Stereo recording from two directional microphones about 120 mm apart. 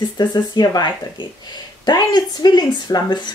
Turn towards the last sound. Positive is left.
turn(degrees=35)  # may be behind; listen again after turning